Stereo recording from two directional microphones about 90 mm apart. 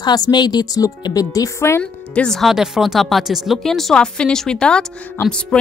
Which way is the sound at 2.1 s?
5° left (ahead or behind).